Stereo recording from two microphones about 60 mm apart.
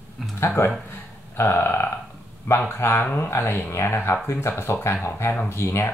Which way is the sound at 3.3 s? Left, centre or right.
Left.